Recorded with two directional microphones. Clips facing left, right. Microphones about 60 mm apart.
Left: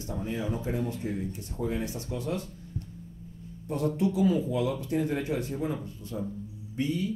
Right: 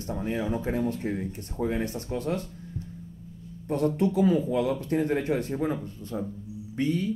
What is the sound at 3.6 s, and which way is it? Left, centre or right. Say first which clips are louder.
Speech: right 3 dB; right.